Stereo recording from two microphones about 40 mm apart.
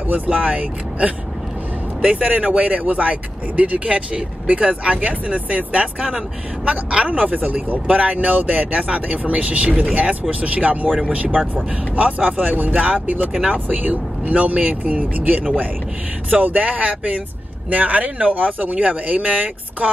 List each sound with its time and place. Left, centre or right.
0.0 s speech: right